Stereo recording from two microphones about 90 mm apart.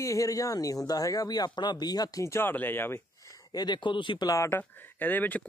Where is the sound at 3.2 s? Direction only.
45° left (ahead or behind); by 4.2 s 65° left (ahead or behind).